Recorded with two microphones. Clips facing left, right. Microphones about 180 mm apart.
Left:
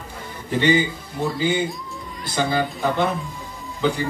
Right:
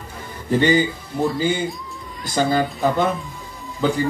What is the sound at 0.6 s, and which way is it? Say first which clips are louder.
Speech: right 1 dB; 45° right (ahead or behind).